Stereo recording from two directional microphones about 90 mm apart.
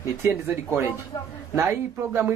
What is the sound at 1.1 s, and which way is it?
Speech, 40° left (ahead or behind).